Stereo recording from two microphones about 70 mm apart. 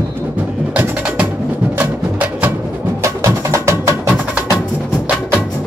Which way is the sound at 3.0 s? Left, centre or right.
Right.